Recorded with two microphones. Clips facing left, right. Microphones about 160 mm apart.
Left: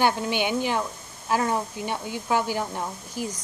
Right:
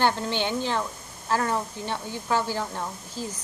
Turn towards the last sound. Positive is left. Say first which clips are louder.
# left 2 dB
turn(degrees=15)  # may be behind; listen again after turning